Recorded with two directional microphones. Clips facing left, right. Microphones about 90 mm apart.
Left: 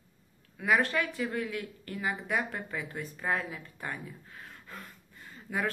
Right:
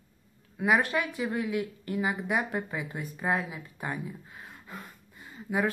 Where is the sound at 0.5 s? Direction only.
20° right (ahead or behind).